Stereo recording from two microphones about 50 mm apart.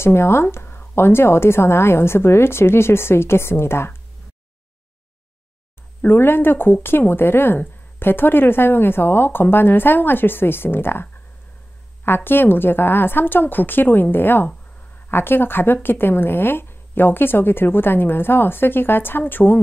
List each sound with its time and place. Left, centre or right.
0.0 s a woman's voice: left
6.0 s speech: left